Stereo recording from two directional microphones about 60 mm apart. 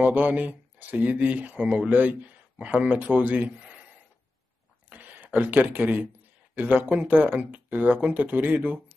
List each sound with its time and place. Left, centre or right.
0.0 s speech: right
4.8 s a sound: right
6.5 s speech: right